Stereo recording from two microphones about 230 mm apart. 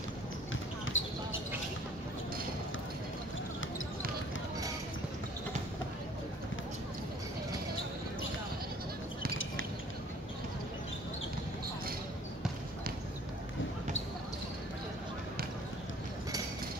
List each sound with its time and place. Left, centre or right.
0.8 s basketball bounce: left